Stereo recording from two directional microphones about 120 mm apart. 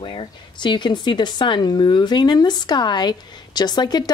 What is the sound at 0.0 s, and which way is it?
Speech, 45° left (ahead or behind).